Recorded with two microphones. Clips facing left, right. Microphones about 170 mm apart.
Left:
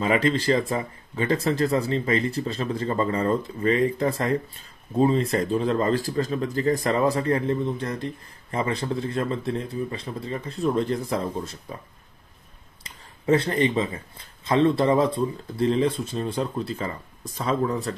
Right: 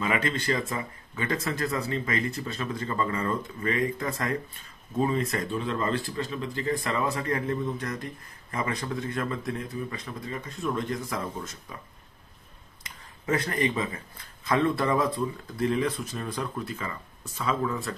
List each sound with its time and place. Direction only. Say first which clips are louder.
0.0 s speech: left 6 dB; 30° left (ahead or behind)
12.8 s speech: left 7 dB; 30° left (ahead or behind)